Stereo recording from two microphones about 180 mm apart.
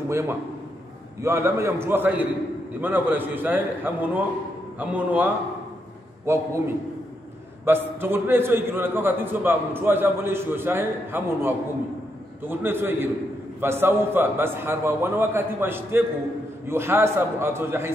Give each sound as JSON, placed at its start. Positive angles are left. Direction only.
{"t": 0.1, "sound": "a man's voice", "side_deg": -15}
{"t": 7.6, "sound": "a man's voice", "side_deg": -10}